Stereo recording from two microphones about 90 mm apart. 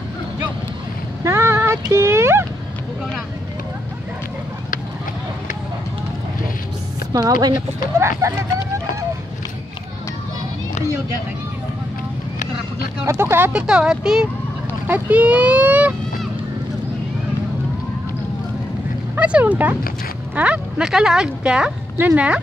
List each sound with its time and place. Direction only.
1.2 s a sound: 30° right (ahead or behind)
7.1 s a woman's voice: 45° right (ahead or behind)
8.0 s speech: 30° right (ahead or behind)
13.0 s speech: 30° right (ahead or behind)
13.5 s speech: 10° right (ahead or behind)
19.1 s speech: 15° right (ahead or behind)